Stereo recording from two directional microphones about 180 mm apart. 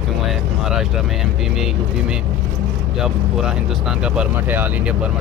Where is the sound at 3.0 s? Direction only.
5° right (ahead or behind).